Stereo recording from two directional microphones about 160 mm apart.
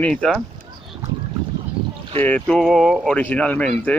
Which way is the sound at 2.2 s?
10° left (ahead or behind).